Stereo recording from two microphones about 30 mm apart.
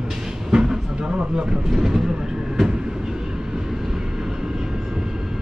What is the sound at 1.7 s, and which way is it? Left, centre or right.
Speech, centre.